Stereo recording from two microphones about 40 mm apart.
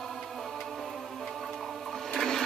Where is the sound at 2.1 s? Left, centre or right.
Centre.